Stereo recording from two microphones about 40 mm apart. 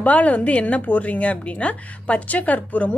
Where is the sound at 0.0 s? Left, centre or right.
Left.